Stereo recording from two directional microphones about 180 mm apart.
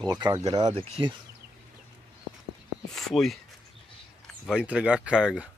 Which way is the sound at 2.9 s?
Centre (ahead or behind).